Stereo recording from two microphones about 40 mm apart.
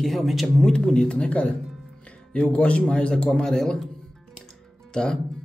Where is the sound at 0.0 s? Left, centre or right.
Centre.